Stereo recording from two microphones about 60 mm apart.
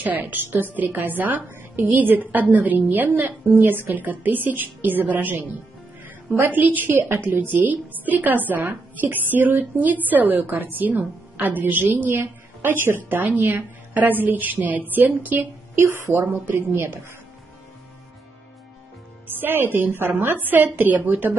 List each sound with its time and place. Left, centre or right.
0.0 s a woman's voice: right
15.7 s a woman's voice: right
19.4 s a woman's voice: right